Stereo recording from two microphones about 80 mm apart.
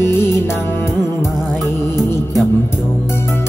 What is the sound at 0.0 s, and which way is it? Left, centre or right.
Music, left.